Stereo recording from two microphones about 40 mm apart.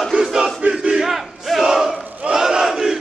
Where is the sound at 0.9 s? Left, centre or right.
Centre.